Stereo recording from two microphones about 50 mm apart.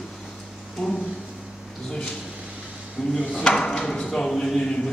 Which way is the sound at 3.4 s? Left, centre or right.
Centre.